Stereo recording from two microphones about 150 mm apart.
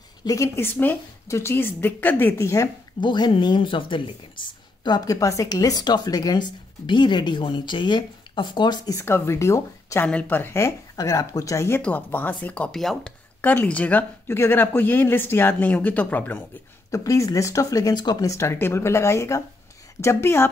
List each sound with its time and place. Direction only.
0.2 s a woman's voice: 20° left (ahead or behind)
16.9 s a woman's voice: 20° left (ahead or behind)